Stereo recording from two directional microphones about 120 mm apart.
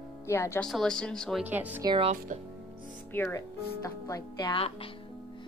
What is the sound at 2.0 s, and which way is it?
Speech, 75° right (ahead or behind).